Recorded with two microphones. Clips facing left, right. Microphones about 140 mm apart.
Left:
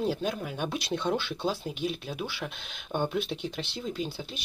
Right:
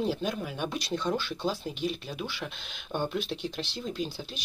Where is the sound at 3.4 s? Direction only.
55° left (ahead or behind).